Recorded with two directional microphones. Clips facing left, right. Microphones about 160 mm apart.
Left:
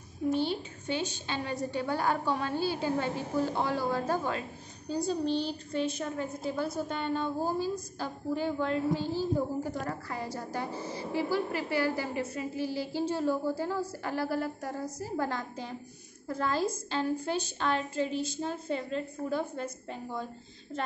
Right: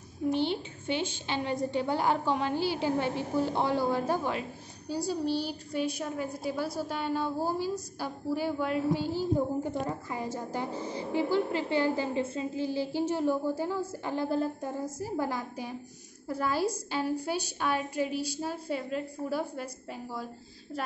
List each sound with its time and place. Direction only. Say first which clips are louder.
0.3 s a woman's voice: right 1 dB; 20° right (ahead or behind)
15.0 s a woman's voice: even; 15° right (ahead or behind)